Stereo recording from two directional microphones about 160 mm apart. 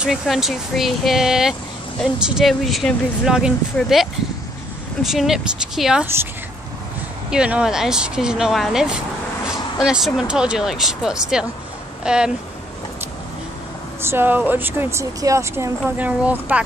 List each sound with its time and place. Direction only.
0.0 s speech: centre (ahead or behind)
7.2 s speech: 5° right (ahead or behind)
14.0 s speech: 15° right (ahead or behind)